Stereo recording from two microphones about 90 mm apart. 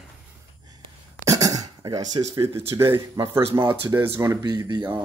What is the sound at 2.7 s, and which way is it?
Speech, 30° right (ahead or behind).